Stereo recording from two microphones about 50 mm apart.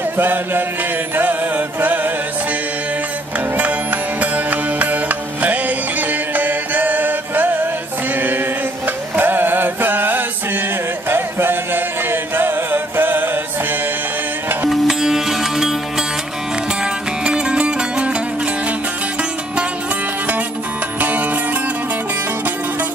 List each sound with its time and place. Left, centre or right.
0.2 s music: right
1.8 s music: right
3.3 s music: right
8.8 s music: right
14.7 s sitar: centre
16.8 s music: centre
21.0 s music: right